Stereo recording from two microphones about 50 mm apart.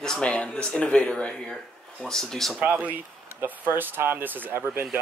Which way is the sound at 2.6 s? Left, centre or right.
Right.